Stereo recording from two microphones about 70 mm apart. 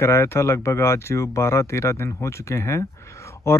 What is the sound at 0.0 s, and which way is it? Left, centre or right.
Speech, left.